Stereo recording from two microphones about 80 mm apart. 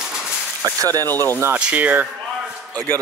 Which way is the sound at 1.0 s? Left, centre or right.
Left.